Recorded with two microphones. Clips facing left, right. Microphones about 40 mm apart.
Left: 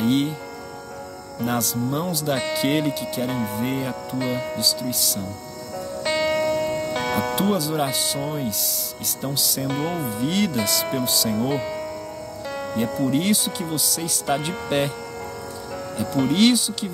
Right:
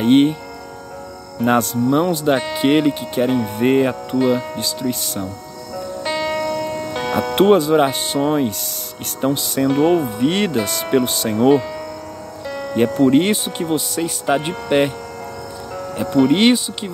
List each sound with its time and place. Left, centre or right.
0.0 s speech: right
1.4 s speech: right
3.4 s speech: right
4.2 s speech: centre
4.6 s speech: right
6.0 s music: centre
7.3 s speech: right
11.5 s speech: centre
12.4 s music: centre
12.7 s speech: right
16.3 s speech: right